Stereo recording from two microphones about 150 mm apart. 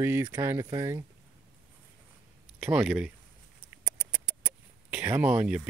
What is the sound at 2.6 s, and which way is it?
Speech, 5° right (ahead or behind).